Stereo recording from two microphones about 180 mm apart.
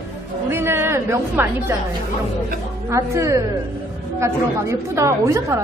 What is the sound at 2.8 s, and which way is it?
A woman's voice, 15° right (ahead or behind).